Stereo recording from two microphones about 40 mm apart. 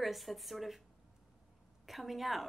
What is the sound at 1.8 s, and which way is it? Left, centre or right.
Speech, centre.